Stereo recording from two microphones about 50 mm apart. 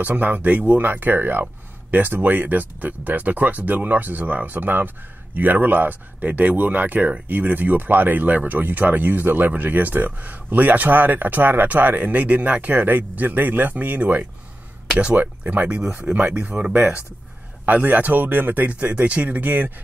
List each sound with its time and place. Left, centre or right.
0.0 s speech: right
14.9 s speech: right
15.4 s speech: right
16.0 s speech: right